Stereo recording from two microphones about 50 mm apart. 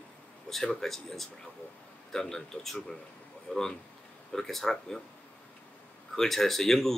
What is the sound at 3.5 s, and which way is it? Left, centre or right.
Speech, centre.